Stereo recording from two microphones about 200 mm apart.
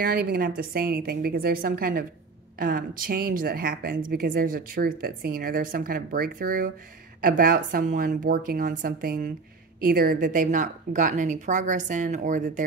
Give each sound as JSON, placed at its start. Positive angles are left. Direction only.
{"t": 0.0, "sound": "a woman's voice", "side_deg": -45}